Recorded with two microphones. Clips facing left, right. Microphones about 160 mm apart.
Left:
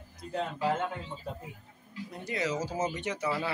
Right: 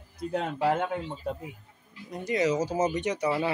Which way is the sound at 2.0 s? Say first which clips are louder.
Right 7 dB; 15° right (ahead or behind).